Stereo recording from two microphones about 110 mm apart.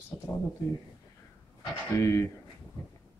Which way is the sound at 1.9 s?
25° left (ahead or behind).